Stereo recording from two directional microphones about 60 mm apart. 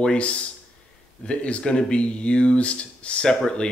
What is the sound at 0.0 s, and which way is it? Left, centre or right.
Speech, centre.